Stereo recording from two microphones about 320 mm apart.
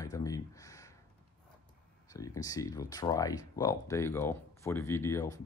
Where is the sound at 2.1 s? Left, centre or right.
Centre.